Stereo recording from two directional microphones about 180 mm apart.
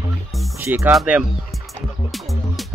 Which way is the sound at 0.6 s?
10° right (ahead or behind).